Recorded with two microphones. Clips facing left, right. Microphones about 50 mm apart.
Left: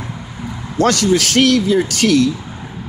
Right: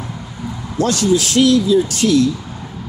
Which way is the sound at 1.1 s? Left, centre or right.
Left.